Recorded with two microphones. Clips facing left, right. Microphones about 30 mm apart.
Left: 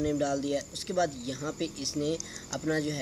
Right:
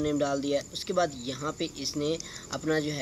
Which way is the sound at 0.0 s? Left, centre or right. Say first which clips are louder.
Right 1 dB; centre.